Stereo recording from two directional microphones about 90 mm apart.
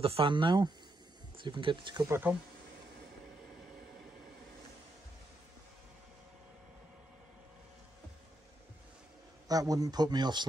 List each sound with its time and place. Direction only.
0.0 s speech: 85° right; by 2.0 s 65° right (ahead or behind)
2.0 s speech: 25° right (ahead or behind)
9.5 s a man's voice: 45° right (ahead or behind)